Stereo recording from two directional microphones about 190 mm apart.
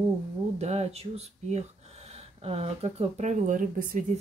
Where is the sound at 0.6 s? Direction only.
35° right (ahead or behind).